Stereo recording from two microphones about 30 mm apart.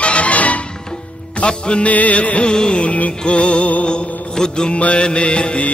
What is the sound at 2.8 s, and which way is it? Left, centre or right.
Music, left.